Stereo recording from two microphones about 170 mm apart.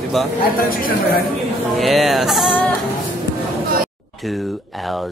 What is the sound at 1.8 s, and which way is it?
Speech, centre (ahead or behind).